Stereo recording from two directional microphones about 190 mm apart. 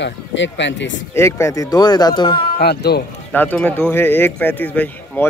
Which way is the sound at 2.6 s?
55° left (ahead or behind).